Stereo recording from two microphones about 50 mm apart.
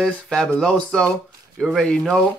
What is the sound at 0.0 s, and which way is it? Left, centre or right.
Speech, centre.